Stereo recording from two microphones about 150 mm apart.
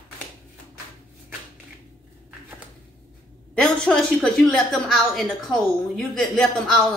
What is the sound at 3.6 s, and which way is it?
A woman's voice, 5° left (ahead or behind).